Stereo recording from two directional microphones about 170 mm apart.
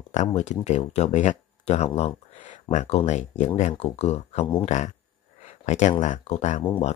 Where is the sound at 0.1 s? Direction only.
45° left (ahead or behind).